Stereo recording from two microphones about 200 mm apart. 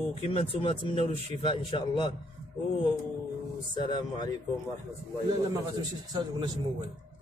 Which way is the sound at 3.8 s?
20° left (ahead or behind).